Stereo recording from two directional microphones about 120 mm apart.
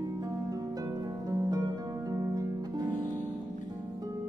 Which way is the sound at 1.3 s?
30° right (ahead or behind).